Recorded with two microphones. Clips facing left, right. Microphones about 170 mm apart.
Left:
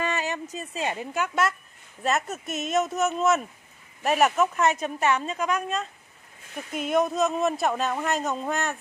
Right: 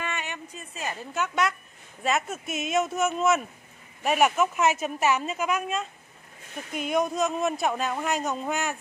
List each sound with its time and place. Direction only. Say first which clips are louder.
0.0 s a sound: left 6 dB; 35° left (ahead or behind)
0.6 s a woman's voice: left 3 dB; 30° left (ahead or behind)
0.9 s a woman's voice: right 2 dB; 10° left (ahead or behind)